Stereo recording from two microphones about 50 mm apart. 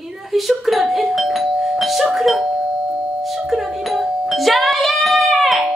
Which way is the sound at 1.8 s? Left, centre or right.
Centre.